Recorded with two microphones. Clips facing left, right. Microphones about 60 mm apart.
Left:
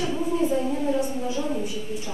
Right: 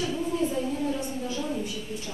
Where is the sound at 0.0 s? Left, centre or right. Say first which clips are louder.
Left 3 dB; centre.